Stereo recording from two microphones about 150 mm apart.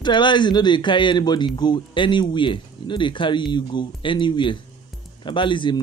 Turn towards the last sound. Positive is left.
turn(degrees=30)  # may be behind; listen again after turning